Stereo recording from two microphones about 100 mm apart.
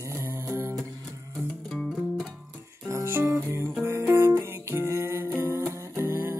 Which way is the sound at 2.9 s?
25° right (ahead or behind).